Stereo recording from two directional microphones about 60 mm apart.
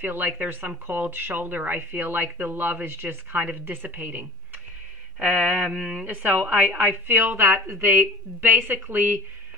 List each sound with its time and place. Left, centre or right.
0.0 s speech: right
5.2 s a sound: right
6.0 s speech: right